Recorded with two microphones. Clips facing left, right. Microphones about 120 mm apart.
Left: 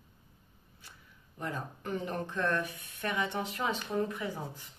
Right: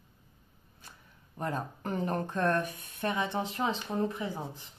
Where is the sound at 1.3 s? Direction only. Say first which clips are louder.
Right 4 dB; 45° right (ahead or behind).